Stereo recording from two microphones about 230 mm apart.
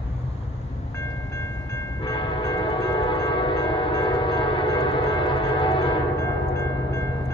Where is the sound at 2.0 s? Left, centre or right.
Centre.